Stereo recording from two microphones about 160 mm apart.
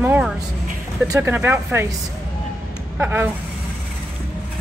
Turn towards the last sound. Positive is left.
turn(degrees=-10)  # may be behind; listen again after turning